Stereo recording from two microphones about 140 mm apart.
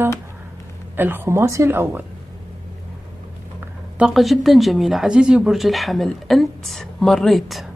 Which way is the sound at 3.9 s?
5° right (ahead or behind).